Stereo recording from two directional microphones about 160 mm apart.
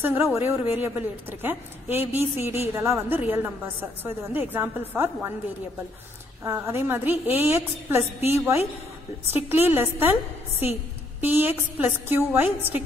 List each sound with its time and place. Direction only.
0.0 s a woman's voice: 15° right (ahead or behind)
6.4 s a woman's voice: 15° right (ahead or behind)